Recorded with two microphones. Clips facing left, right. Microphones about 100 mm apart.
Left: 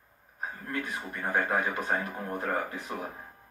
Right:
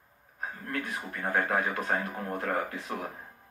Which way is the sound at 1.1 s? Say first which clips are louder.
Even; 20° left (ahead or behind).